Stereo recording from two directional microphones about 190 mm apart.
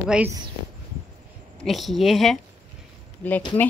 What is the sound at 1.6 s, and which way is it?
Speech, centre (ahead or behind).